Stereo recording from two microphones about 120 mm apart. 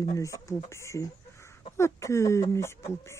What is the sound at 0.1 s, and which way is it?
Speech, 25° left (ahead or behind).